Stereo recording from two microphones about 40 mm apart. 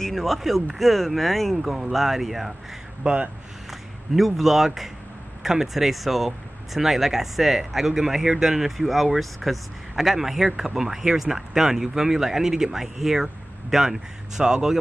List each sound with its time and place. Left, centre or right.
0.1 s speech: centre
3.0 s speech: right
4.1 s speech: centre